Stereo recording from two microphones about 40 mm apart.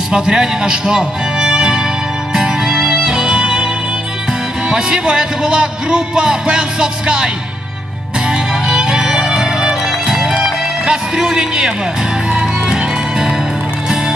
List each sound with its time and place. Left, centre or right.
0.1 s speech: centre
2.3 s music: centre
4.3 s speech: centre
8.3 s music: centre